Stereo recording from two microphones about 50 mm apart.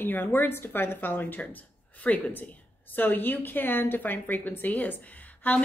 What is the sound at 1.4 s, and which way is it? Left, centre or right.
Speech, left.